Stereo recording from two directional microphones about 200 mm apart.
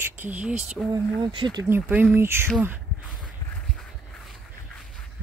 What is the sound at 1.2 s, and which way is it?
Speech, 20° right (ahead or behind).